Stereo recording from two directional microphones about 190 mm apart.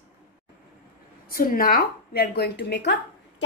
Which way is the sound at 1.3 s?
50° left (ahead or behind).